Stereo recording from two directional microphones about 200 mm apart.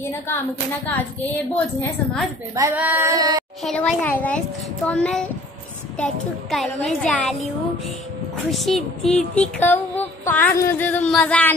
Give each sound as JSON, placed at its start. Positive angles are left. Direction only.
{"t": 0.8, "sound": "speech", "side_deg": 10}
{"t": 2.5, "sound": "female singing", "side_deg": -10}
{"t": 3.6, "sound": "speech", "side_deg": 5}
{"t": 6.5, "sound": "speech", "side_deg": 0}
{"t": 8.5, "sound": "speech", "side_deg": 0}